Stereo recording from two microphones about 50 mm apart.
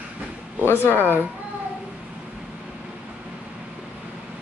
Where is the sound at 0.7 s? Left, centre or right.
Left.